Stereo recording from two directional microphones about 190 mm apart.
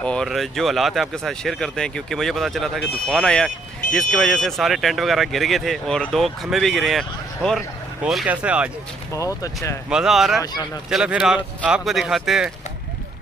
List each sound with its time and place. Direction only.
0.0 s speech: 5° left (ahead or behind)
9.1 s speech: 15° left (ahead or behind)
9.8 s speech: 5° right (ahead or behind)
10.4 s speech: 20° left (ahead or behind)
10.9 s speech: 5° right (ahead or behind)